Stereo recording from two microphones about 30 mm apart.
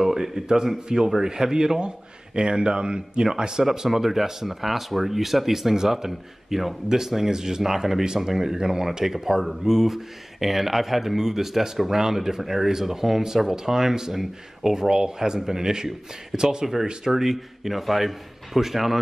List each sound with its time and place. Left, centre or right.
0.0 s a sound: centre
0.8 s speech: right
3.9 s speech: centre
17.1 s speech: centre